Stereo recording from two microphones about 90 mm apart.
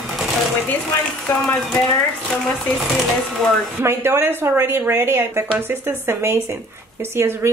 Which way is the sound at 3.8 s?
30° right (ahead or behind).